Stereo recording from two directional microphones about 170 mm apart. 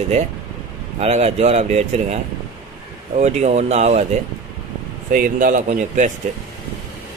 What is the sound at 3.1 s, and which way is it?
Speech, 40° right (ahead or behind).